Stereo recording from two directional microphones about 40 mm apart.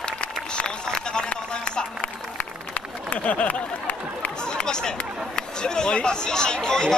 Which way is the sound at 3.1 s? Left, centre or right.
Left.